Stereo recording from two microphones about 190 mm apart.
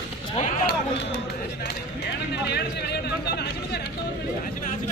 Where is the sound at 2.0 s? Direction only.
60° left (ahead or behind).